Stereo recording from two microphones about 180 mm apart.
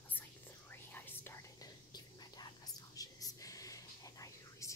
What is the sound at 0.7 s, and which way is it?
Whispering, 10° left (ahead or behind).